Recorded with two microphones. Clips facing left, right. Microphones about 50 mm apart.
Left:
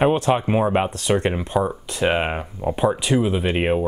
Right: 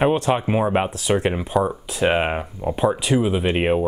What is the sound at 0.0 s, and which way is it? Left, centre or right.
Speech, centre.